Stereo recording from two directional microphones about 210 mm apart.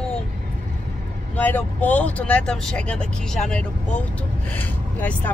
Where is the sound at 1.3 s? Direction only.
10° left (ahead or behind).